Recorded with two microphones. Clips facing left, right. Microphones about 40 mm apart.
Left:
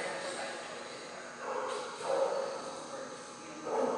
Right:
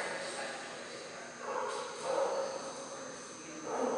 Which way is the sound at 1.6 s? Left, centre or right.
Centre.